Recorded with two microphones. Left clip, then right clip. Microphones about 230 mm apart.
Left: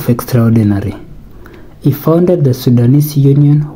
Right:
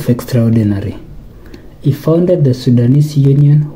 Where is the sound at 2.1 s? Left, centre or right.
Centre.